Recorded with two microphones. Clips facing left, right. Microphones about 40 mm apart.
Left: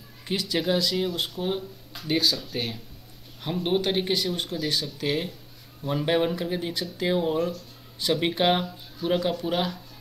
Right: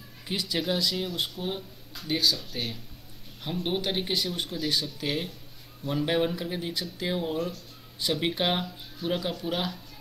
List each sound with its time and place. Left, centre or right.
0.4 s speech: centre
1.4 s speech: centre
2.5 s speech: centre
4.1 s speech: centre